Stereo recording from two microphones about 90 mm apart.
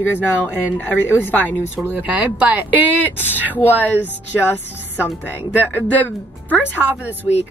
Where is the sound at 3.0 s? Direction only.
20° left (ahead or behind).